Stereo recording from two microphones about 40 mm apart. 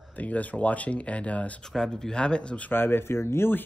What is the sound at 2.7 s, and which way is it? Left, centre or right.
Speech, left.